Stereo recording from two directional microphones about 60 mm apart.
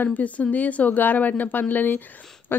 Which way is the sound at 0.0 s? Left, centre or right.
Left.